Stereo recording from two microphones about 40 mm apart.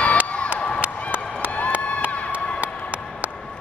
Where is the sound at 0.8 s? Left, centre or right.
Right.